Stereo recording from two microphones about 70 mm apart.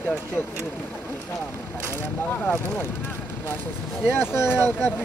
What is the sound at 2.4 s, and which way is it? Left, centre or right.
Speech, left.